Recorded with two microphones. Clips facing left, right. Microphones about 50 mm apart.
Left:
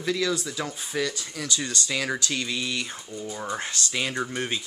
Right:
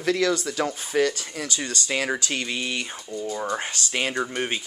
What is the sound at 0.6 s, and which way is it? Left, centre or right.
Speech, right.